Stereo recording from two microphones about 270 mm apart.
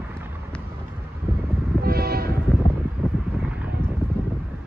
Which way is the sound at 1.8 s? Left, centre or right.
Right.